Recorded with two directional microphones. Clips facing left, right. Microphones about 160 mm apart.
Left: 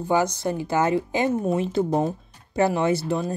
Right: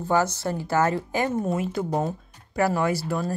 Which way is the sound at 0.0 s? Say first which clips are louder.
Left 1 dB; 15° left (ahead or behind).